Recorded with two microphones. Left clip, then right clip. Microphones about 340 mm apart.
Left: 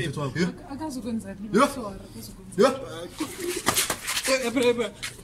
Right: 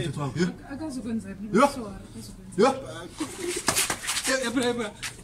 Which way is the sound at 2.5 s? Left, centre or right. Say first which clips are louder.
Left 1 dB; centre.